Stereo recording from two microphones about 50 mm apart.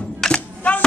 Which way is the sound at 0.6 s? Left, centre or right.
Left.